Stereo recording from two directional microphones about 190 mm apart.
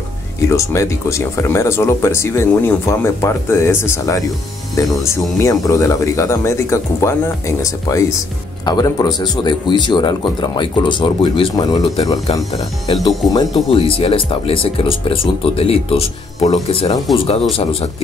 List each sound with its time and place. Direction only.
0.5 s speech: 15° left (ahead or behind)
13.0 s speech: 20° left (ahead or behind)